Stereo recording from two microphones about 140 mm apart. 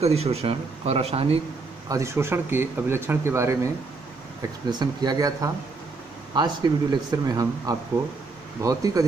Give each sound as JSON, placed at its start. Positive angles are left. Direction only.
{"t": 0.0, "sound": "a man's voice", "side_deg": -45}
{"t": 1.9, "sound": "speech", "side_deg": -20}
{"t": 4.6, "sound": "speech", "side_deg": -30}